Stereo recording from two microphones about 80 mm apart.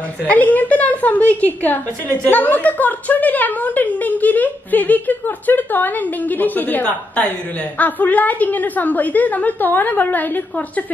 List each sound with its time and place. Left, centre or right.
0.3 s a woman's voice: centre